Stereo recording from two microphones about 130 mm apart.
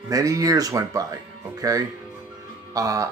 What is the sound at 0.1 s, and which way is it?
Speech, 25° right (ahead or behind).